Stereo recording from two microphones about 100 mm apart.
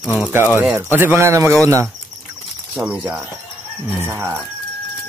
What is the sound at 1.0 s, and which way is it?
Speech, 25° right (ahead or behind).